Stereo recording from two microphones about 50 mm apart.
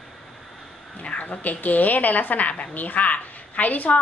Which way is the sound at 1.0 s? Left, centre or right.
Left.